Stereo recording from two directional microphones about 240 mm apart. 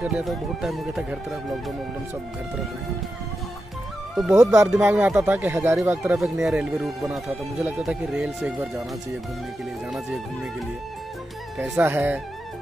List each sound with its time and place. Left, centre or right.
0.0 s speech: centre
4.1 s speech: centre
4.4 s speech: centre
11.5 s speech: centre